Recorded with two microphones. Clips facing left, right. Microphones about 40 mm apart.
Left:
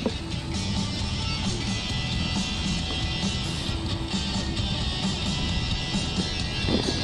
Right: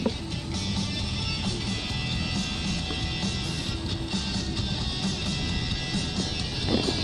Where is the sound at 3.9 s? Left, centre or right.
Left.